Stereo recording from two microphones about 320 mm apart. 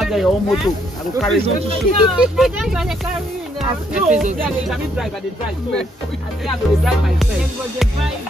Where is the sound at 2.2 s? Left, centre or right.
Centre.